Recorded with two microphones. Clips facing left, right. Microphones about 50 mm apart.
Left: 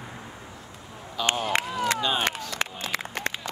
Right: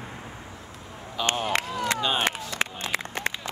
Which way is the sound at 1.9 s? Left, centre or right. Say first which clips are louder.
Right 1 dB; centre.